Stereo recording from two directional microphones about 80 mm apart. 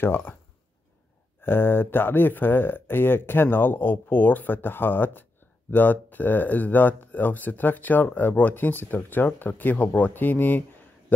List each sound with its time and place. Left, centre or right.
0.0 s speech: left
1.4 s speech: left